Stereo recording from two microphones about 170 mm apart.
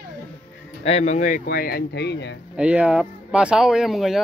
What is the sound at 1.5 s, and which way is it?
Speech, 65° left (ahead or behind).